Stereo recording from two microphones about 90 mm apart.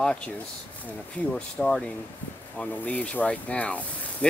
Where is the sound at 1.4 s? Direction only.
10° left (ahead or behind).